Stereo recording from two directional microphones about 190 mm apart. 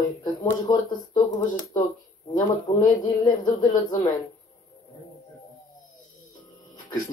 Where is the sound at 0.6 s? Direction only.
20° left (ahead or behind).